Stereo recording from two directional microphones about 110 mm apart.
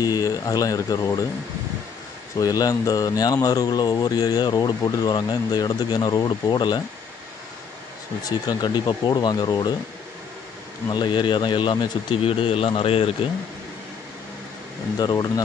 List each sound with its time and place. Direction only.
0.0 s speech: 35° left (ahead or behind)
2.3 s speech: 35° left (ahead or behind)
8.2 s speech: 35° left (ahead or behind)
10.9 s speech: 45° left (ahead or behind)
12.2 s speech: 55° left (ahead or behind)
15.0 s speech: 35° left (ahead or behind)